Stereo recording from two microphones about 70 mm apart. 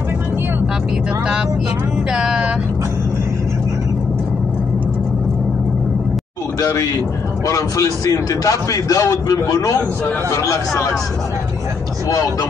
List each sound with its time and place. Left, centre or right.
2.1 s vehicle: centre
6.6 s a man's voice: left